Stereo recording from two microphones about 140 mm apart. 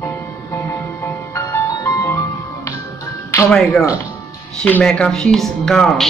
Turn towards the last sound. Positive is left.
turn(degrees=5)  # may be behind; listen again after turning